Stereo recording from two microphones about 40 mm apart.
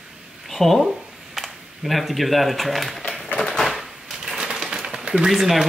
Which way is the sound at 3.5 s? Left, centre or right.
Centre.